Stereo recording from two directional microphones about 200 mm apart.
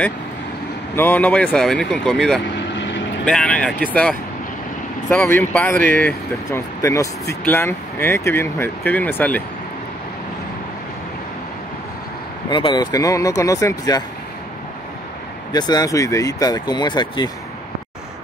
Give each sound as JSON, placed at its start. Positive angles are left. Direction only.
{"t": 0.9, "sound": "speech", "side_deg": 10}
{"t": 2.7, "sound": "vehicle", "side_deg": 60}
{"t": 3.3, "sound": "speech", "side_deg": 5}
{"t": 12.4, "sound": "speech", "side_deg": 25}
{"t": 15.5, "sound": "speech", "side_deg": 20}